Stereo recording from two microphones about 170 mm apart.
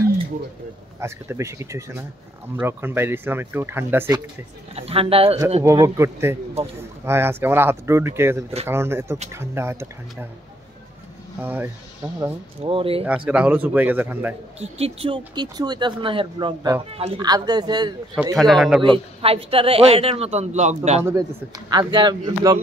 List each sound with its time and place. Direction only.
1.0 s speech: 15° right (ahead or behind)
4.7 s a man's voice: 35° right (ahead or behind)
5.6 s speech: 15° right (ahead or behind)
11.4 s speech: 10° right (ahead or behind)
12.6 s a man's voice: 30° right (ahead or behind)
13.0 s speech: 5° right (ahead or behind)
14.6 s speech: 35° right (ahead or behind)
18.3 s a man's voice: centre (ahead or behind)
18.8 s a man's voice: 30° right (ahead or behind)
21.0 s speech: 20° right (ahead or behind)